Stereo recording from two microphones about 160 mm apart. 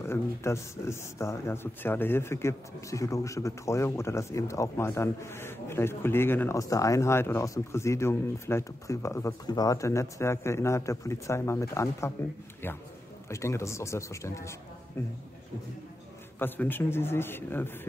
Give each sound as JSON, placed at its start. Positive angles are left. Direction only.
{"t": 0.0, "sound": "speech", "side_deg": 15}
{"t": 16.3, "sound": "speech", "side_deg": 10}